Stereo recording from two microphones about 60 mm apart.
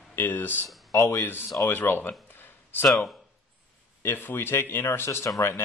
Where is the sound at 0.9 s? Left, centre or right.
Left.